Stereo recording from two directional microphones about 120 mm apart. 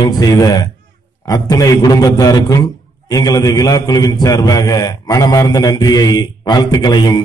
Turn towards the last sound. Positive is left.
turn(degrees=35)  # may be behind; listen again after turning